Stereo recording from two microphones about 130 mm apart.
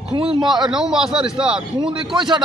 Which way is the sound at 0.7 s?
5° right (ahead or behind).